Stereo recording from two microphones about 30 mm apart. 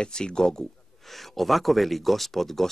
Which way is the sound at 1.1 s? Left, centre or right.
Centre.